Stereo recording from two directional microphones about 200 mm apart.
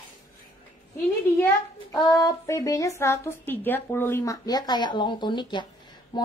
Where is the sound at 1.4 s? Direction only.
20° left (ahead or behind).